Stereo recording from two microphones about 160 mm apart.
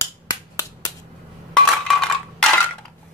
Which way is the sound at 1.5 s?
5° left (ahead or behind).